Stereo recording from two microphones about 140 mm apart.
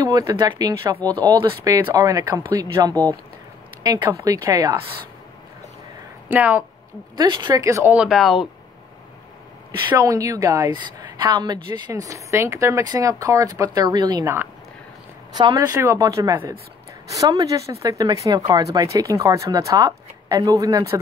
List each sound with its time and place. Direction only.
0.0 s a woman's voice: 25° right (ahead or behind)
4.0 s a woman's voice: 20° right (ahead or behind)
6.2 s a woman's voice: 10° right (ahead or behind)
7.2 s a woman's voice: 30° right (ahead or behind)
7.9 s speech: 5° right (ahead or behind)
9.9 s a woman's voice: 25° right (ahead or behind)
15.3 s a woman's voice: 30° right (ahead or behind)